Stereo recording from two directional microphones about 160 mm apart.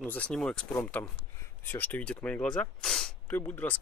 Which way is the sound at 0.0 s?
10° left (ahead or behind).